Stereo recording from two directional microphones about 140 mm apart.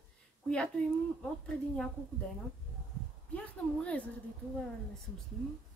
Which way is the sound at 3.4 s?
10° left (ahead or behind).